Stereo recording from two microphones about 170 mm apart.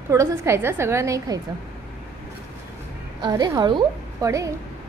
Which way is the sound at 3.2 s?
25° right (ahead or behind).